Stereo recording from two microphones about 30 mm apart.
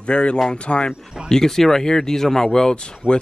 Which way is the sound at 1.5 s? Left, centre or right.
Centre.